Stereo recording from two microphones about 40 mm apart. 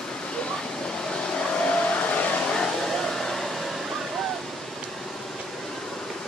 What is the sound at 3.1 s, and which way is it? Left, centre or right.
Hair dryer, centre.